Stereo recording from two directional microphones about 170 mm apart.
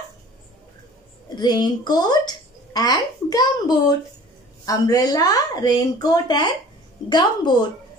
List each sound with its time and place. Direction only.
1.3 s speech: 25° left (ahead or behind)